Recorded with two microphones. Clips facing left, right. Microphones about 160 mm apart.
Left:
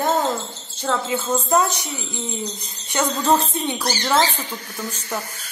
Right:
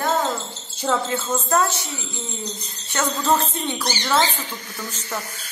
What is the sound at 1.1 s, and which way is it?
Speech, 10° left (ahead or behind).